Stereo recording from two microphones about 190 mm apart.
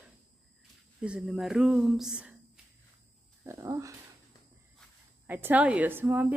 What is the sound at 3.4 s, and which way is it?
Speech, 15° right (ahead or behind).